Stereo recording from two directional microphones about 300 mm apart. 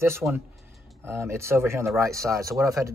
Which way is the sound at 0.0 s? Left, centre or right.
Centre.